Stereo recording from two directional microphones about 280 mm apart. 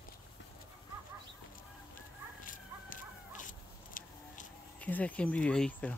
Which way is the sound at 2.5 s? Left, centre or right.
Left.